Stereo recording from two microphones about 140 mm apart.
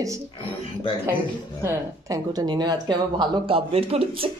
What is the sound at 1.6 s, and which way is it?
Speech, 20° right (ahead or behind).